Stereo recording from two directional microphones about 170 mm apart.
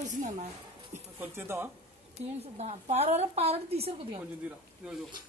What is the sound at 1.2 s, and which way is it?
Speech, 15° right (ahead or behind).